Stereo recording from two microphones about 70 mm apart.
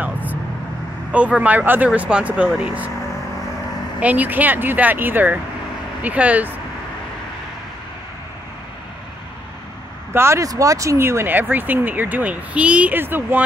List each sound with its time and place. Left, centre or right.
0.0 s vehicle: right
1.1 s speech: centre
4.0 s speech: right
10.1 s speech: right
10.4 s speech: right; by 13.0 s centre
13.0 s speech: right